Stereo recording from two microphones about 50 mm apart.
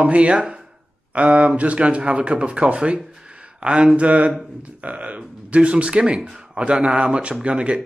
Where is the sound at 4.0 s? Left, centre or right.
Right.